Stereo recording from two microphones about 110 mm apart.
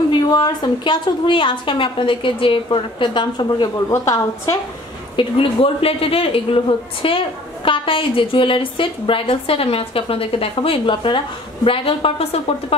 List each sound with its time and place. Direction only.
0.3 s a woman's voice: 40° left (ahead or behind)
3.9 s a woman's voice: 30° left (ahead or behind)
5.1 s speech: 55° left (ahead or behind)